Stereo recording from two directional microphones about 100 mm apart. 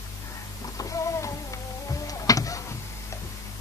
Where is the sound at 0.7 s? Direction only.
35° left (ahead or behind).